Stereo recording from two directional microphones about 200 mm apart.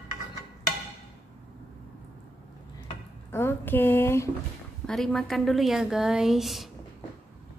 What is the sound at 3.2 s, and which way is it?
A woman's voice, 10° left (ahead or behind).